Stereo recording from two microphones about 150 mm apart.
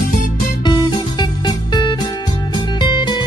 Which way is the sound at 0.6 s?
30° left (ahead or behind).